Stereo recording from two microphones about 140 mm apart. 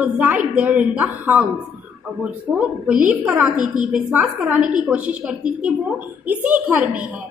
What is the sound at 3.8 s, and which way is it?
A woman's voice, 5° right (ahead or behind).